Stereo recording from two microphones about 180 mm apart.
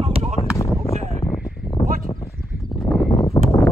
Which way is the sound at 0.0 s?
35° right (ahead or behind).